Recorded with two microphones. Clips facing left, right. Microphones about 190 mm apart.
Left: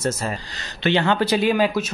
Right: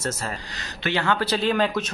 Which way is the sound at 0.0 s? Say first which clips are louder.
Left 5 dB; 20° left (ahead or behind).